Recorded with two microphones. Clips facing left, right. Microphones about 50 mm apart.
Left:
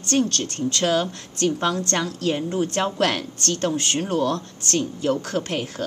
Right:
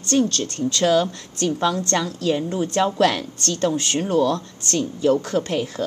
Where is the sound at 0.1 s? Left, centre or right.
Left.